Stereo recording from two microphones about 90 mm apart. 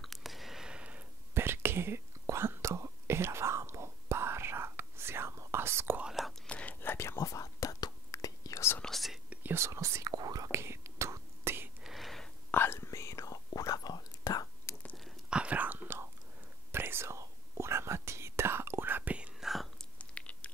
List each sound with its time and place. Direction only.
0.0 s a sound: centre (ahead or behind)
1.3 s whispering: 25° right (ahead or behind)
5.9 s whispering: 5° right (ahead or behind)
6.4 s whispering: 15° left (ahead or behind); by 8.7 s 35° left (ahead or behind)
8.7 s whispering: 5° left (ahead or behind)
9.3 s whispering: 20° right (ahead or behind)
11.8 s a sound: centre (ahead or behind)
12.4 s whispering: 25° left (ahead or behind); by 14.8 s 45° left (ahead or behind)
15.2 s whispering: 10° right (ahead or behind)
19.4 s whispering: centre (ahead or behind)
20.0 s chewing: 15° left (ahead or behind)